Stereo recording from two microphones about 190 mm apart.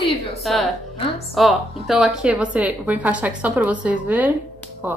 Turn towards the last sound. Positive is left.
turn(degrees=-10)  # may be behind; listen again after turning